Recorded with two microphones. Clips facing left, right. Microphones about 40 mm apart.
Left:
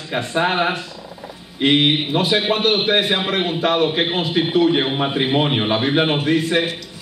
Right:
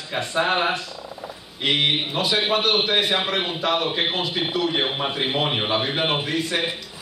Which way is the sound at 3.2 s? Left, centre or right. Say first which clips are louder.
Left 4 dB; centre.